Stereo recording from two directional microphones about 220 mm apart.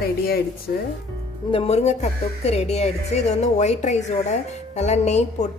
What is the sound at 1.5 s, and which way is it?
A woman's voice, 25° left (ahead or behind).